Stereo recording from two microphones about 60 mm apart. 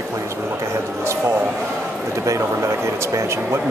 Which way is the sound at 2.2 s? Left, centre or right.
Right.